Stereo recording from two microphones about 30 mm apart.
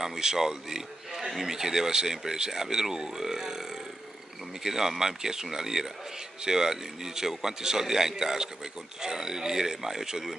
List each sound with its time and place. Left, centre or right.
0.2 s a man's voice: centre
4.6 s a man's voice: centre